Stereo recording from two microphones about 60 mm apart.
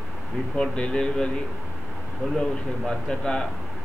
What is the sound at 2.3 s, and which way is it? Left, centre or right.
A man's voice, centre.